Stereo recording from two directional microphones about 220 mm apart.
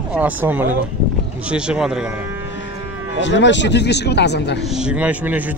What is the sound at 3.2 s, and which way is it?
Speech, 55° left (ahead or behind).